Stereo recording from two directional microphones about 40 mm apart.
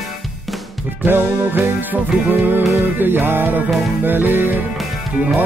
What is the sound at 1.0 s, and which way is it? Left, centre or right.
Music, right.